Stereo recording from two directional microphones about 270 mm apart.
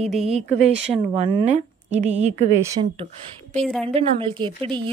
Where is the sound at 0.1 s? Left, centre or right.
Centre.